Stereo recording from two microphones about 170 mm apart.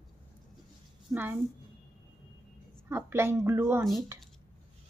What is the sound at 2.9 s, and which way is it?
Speech, 15° right (ahead or behind).